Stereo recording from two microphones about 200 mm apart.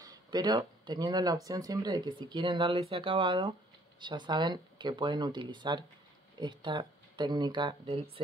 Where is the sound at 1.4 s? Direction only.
15° right (ahead or behind).